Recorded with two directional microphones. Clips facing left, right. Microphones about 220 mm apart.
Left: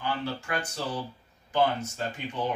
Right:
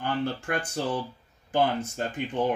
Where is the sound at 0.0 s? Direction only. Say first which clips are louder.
Right 3 dB; 50° right (ahead or behind).